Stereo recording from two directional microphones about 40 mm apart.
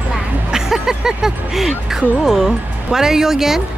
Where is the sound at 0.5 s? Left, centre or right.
Centre.